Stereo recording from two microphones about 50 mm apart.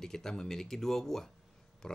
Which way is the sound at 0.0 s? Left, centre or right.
Centre.